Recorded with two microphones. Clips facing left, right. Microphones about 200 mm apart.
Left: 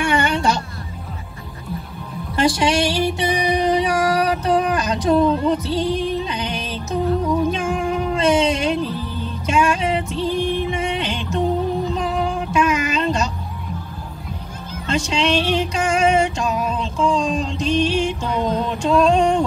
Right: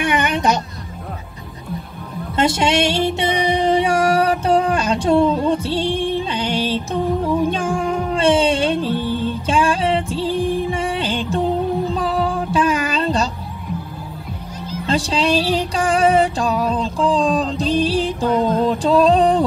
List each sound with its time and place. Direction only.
0.0 s music: 20° right (ahead or behind)
2.3 s music: 25° right (ahead or behind)
14.9 s a sound: 35° right (ahead or behind)